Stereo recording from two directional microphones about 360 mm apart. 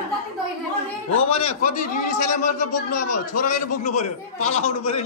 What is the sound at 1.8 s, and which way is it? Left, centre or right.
A man's voice, left.